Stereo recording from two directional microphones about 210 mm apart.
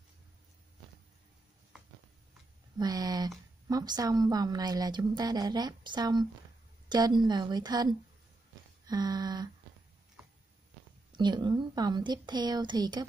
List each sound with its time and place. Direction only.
2.8 s a woman's voice: 20° right (ahead or behind)
11.1 s a woman's voice: 20° right (ahead or behind)